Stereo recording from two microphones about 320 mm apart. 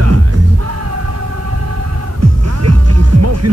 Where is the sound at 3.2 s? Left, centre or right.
Right.